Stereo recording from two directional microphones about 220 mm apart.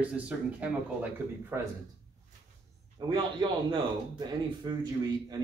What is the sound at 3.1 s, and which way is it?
Speech, 20° right (ahead or behind).